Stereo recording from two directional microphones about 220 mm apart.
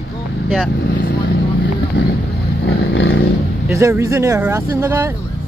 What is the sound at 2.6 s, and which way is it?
Vehicle, 50° left (ahead or behind).